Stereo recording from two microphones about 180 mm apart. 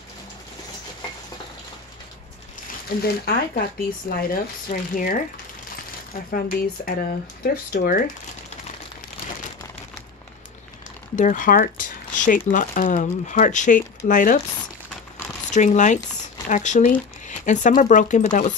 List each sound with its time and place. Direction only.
3.0 s speech: 55° left (ahead or behind)
6.3 s speech: 55° left (ahead or behind)
11.1 s speech: 45° left (ahead or behind)
15.5 s speech: 40° left (ahead or behind)